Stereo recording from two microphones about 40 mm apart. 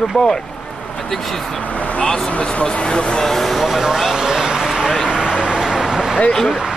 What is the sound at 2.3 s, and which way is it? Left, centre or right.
Speech, left.